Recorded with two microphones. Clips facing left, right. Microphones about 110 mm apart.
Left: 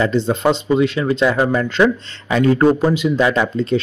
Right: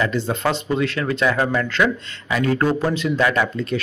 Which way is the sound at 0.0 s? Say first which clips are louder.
Left 5 dB; 25° left (ahead or behind).